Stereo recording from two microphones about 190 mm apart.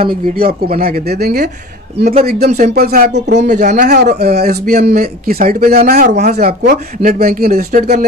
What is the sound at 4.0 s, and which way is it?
Speech, 55° right (ahead or behind).